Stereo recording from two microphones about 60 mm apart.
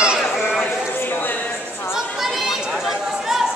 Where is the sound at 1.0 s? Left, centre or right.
Left.